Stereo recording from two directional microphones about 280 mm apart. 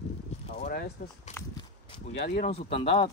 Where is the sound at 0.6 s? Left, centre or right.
Left.